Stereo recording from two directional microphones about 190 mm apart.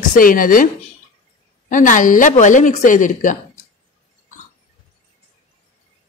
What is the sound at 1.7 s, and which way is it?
Speech, 45° left (ahead or behind).